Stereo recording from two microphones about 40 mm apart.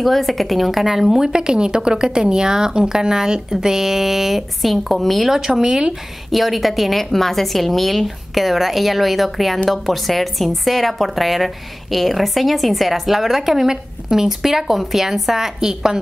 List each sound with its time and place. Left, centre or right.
0.0 s a woman's voice: centre
1.3 s a woman's voice: centre
6.3 s a woman's voice: centre